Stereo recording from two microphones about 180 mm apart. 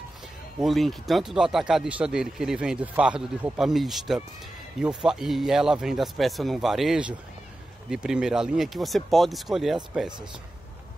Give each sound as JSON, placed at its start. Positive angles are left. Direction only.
{"t": 0.6, "sound": "speech", "side_deg": 0}